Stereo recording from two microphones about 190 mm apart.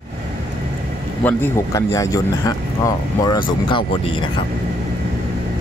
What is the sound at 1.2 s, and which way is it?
Speech, 15° left (ahead or behind).